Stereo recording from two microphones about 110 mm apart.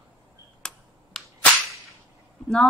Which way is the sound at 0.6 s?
5° left (ahead or behind).